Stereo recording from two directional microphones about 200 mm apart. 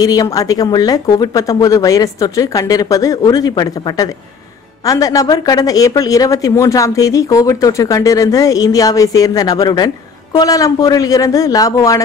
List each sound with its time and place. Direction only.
0.0 s speech: 15° left (ahead or behind)